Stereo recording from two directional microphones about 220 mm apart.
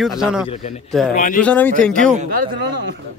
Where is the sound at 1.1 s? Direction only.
35° left (ahead or behind).